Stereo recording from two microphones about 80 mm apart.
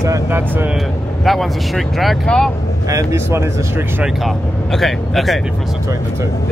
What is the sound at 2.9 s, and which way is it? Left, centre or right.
Speech, right.